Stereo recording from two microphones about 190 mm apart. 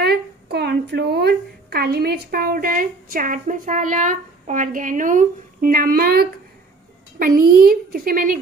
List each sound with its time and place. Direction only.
0.0 s a woman's voice: 55° right (ahead or behind)